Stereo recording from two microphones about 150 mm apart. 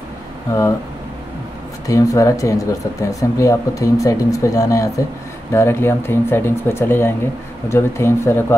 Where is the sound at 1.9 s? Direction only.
20° left (ahead or behind).